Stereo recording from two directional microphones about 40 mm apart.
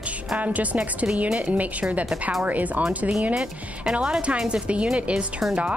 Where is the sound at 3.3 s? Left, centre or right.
Right.